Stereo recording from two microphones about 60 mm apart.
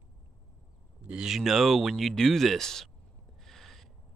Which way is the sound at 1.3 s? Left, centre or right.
Centre.